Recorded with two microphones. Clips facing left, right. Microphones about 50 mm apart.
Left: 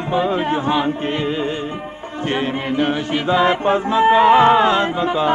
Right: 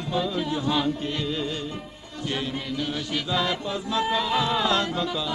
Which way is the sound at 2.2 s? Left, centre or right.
Left.